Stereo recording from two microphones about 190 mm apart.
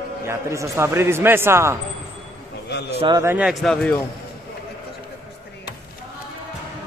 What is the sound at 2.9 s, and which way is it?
Speech, 30° right (ahead or behind).